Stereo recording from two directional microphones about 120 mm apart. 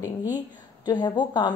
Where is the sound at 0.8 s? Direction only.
35° left (ahead or behind).